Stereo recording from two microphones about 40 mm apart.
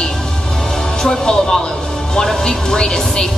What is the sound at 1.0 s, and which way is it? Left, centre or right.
Speech, centre.